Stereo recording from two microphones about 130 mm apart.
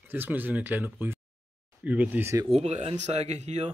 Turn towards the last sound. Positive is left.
turn(degrees=-60)  # may be behind; listen again after turning